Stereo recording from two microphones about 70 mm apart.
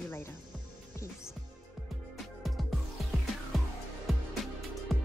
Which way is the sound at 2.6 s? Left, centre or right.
Centre.